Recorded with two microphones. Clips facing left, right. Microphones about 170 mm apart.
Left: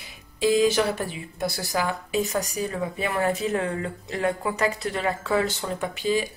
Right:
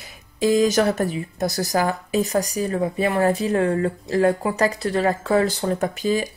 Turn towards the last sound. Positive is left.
turn(degrees=-40)  # may be behind; listen again after turning